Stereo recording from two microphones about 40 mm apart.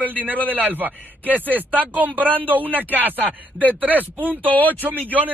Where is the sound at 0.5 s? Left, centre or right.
Right.